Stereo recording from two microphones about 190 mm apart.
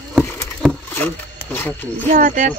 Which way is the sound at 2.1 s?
40° right (ahead or behind).